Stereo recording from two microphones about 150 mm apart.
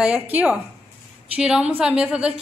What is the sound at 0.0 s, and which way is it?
A woman's voice, 10° right (ahead or behind).